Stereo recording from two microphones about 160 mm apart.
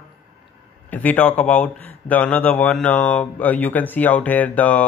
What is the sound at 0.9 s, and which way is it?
Speech, 10° left (ahead or behind).